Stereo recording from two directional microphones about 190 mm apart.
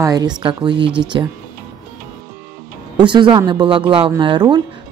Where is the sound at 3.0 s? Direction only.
25° right (ahead or behind).